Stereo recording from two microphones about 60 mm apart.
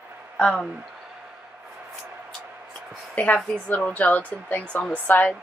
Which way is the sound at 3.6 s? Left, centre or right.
Left.